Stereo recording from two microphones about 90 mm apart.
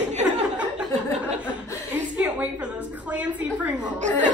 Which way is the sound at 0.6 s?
15° right (ahead or behind).